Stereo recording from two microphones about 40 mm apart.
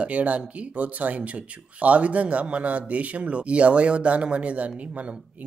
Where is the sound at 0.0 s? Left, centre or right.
Right.